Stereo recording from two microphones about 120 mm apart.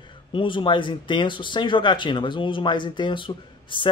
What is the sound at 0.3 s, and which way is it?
Speech, 45° left (ahead or behind).